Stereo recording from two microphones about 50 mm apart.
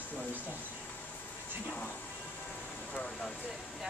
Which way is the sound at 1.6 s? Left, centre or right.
Left.